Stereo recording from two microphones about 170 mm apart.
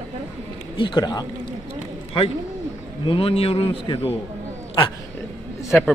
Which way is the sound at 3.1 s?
35° left (ahead or behind).